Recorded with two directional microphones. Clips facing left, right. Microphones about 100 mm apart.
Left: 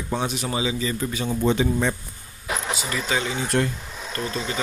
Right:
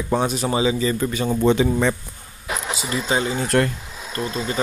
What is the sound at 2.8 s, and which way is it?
Speech, 30° right (ahead or behind).